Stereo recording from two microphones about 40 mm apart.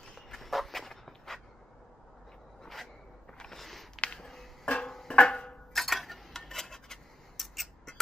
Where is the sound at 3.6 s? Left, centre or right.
Centre.